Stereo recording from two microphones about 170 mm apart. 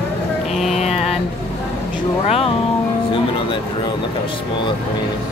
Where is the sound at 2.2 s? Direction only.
35° left (ahead or behind).